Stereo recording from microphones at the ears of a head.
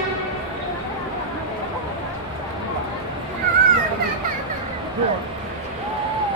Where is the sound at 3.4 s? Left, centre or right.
Right.